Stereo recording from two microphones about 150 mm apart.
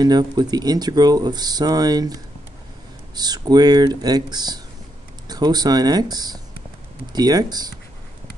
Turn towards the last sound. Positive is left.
turn(degrees=-25)  # may be behind; listen again after turning